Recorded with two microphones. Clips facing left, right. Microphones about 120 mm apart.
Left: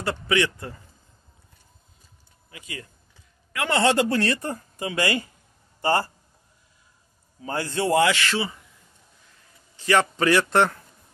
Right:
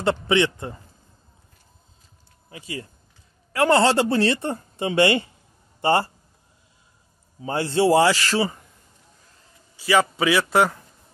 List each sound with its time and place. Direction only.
0.0 s speech: 25° right (ahead or behind)
2.5 s a man's voice: 30° right (ahead or behind)
7.4 s a man's voice: 25° right (ahead or behind)
9.8 s a man's voice: 5° right (ahead or behind)